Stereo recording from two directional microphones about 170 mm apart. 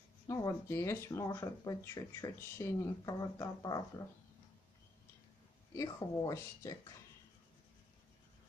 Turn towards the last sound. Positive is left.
turn(degrees=20)  # may be behind; listen again after turning